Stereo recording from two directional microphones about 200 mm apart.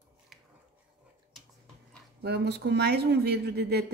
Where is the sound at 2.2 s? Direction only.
55° right (ahead or behind).